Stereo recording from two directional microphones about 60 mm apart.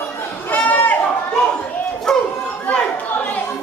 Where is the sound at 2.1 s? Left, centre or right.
Centre.